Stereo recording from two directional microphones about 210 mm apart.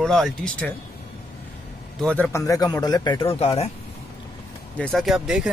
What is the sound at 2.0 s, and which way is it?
Speech, 5° left (ahead or behind).